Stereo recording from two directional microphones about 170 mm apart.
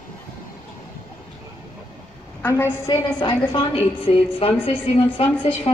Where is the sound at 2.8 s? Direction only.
25° left (ahead or behind).